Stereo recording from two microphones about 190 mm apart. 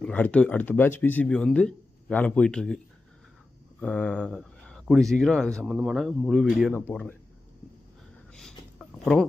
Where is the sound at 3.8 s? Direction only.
10° left (ahead or behind).